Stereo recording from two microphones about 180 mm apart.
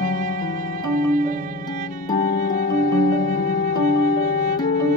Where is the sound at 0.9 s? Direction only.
45° right (ahead or behind).